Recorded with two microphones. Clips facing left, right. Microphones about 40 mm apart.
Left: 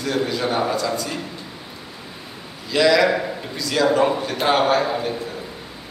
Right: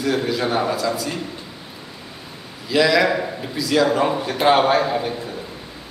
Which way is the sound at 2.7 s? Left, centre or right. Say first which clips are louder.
Even; centre.